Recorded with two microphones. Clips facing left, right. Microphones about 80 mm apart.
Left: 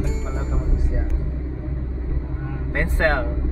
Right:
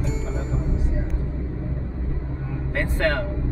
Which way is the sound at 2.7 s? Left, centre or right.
Left.